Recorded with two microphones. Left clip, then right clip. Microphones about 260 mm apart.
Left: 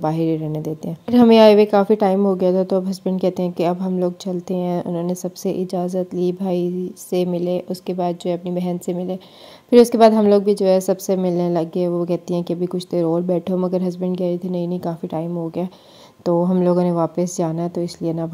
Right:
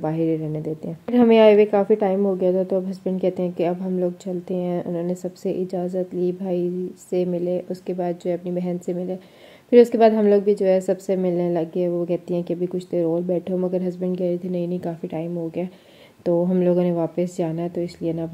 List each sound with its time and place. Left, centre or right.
0.0 s a woman's voice: left